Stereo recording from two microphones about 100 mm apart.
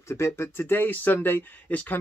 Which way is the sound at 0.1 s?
25° left (ahead or behind).